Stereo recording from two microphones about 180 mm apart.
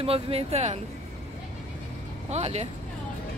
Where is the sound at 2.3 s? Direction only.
35° right (ahead or behind).